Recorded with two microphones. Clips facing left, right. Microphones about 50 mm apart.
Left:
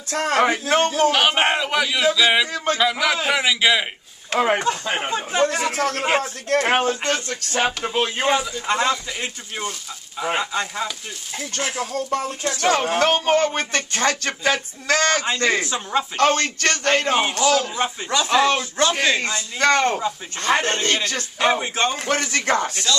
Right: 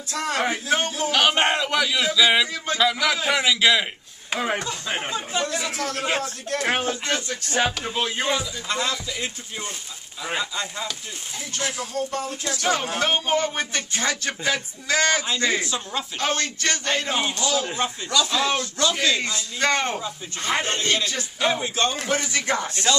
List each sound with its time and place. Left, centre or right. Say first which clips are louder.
0.1 s speech: left 6 dB; left
1.1 s speech: left 1 dB; centre
2.5 s speech: left 5 dB; left
2.8 s a man's voice: right 1 dB; centre
4.6 s speech: left 6 dB; left
13.1 s a man's voice: left 4 dB; left
19.6 s a man's voice: left 5 dB; left
21.5 s speech: left 3 dB; left
22.0 s speech: left 3 dB; left